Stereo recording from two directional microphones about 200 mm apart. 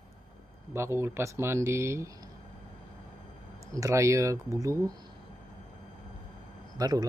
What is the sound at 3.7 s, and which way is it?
A man's voice, 15° right (ahead or behind).